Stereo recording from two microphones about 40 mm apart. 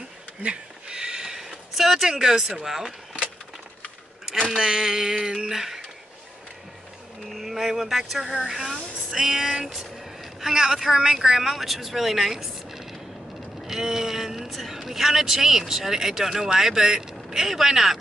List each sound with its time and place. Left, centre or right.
0.4 s a sound: right
1.5 s speech: centre
4.6 s speech: centre
7.2 s speech: centre
13.7 s a sound: centre
14.9 s speech: centre